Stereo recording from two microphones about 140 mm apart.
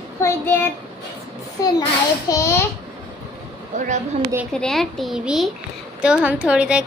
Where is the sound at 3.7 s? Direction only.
60° right (ahead or behind).